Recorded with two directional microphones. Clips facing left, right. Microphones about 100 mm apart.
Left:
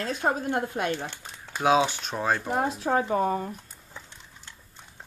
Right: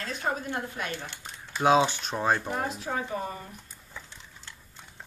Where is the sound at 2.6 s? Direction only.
50° left (ahead or behind).